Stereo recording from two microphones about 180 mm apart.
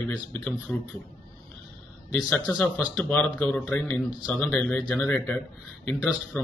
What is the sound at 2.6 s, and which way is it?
A man's voice, 5° left (ahead or behind).